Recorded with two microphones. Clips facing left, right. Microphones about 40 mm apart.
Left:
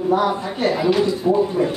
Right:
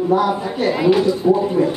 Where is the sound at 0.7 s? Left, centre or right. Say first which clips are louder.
Right 4 dB; centre.